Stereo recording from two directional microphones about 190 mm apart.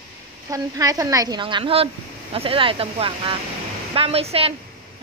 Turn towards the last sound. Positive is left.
turn(degrees=-30)  # may be behind; listen again after turning